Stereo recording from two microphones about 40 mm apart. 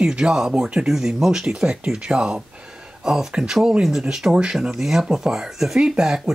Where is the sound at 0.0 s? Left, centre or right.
Centre.